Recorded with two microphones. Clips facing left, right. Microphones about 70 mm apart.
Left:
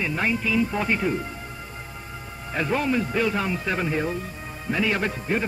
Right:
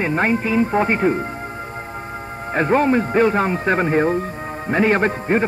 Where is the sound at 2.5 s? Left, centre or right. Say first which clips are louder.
Right 8 dB; right.